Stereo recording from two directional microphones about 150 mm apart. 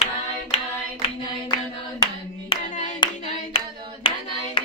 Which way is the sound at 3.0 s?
30° left (ahead or behind).